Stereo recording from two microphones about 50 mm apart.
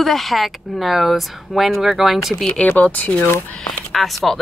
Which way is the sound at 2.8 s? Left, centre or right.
Left.